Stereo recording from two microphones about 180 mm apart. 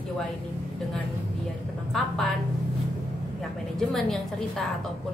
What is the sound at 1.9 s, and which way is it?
Speech, centre (ahead or behind).